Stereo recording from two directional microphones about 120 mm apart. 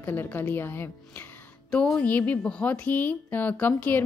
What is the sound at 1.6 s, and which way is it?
A woman's voice, 5° left (ahead or behind).